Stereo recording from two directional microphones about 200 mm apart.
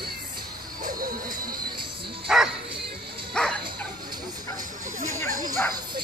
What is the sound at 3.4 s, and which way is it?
Dog, 5° left (ahead or behind).